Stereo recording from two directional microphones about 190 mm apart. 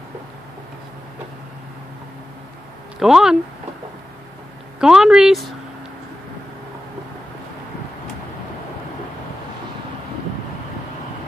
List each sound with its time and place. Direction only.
3.0 s speech: 5° right (ahead or behind)
4.7 s speech: 5° right (ahead or behind)